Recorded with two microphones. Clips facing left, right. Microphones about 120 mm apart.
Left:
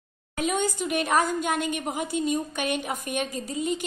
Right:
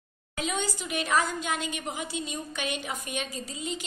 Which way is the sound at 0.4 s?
50° left (ahead or behind).